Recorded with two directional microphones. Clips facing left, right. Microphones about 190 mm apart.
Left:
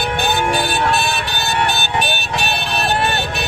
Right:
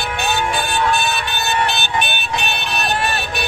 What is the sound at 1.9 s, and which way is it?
Vehicle, 35° left (ahead or behind).